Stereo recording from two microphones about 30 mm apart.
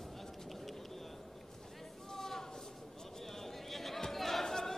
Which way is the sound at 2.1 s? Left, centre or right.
Centre.